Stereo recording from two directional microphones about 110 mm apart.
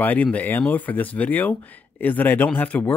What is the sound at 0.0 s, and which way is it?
Speech, 15° left (ahead or behind).